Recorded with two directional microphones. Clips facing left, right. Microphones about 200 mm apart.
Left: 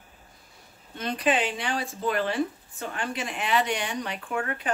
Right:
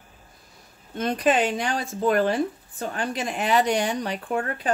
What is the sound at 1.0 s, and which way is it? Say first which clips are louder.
Speech: right 4 dB; 45° right (ahead or behind).